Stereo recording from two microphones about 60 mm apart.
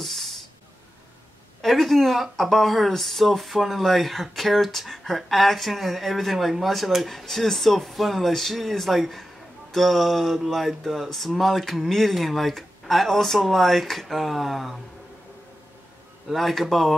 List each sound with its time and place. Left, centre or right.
0.0 s music: centre
1.6 s speech: centre
16.3 s speech: centre